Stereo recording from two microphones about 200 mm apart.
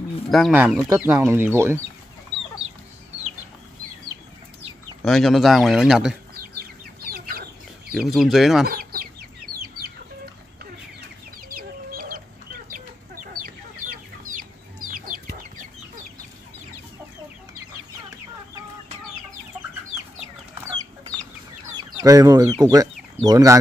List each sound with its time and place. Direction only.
0.3 s speech: centre (ahead or behind)
5.0 s speech: centre (ahead or behind)
6.3 s chicken: 50° right (ahead or behind)
7.9 s speech: centre (ahead or behind)
8.6 s chicken: 45° right (ahead or behind)
11.4 s chicken: 45° right (ahead or behind)
15.0 s chicken: 45° right (ahead or behind)
21.7 s speech: 15° right (ahead or behind)